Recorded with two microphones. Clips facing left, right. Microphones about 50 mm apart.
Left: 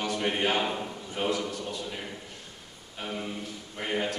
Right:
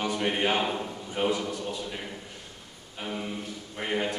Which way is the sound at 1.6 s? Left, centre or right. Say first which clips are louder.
Right 1 dB; centre.